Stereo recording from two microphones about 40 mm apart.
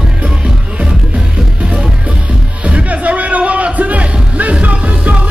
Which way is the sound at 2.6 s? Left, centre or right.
Right.